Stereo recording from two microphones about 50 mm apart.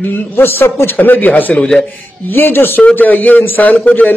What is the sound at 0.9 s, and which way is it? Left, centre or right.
A man's voice, left.